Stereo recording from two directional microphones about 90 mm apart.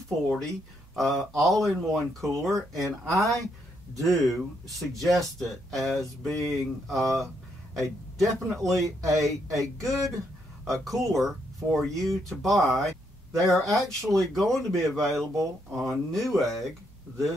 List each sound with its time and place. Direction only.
0.9 s speech: centre (ahead or behind)
8.2 s speech: centre (ahead or behind)
8.8 s speech: 35° right (ahead or behind)
9.2 s speech: centre (ahead or behind)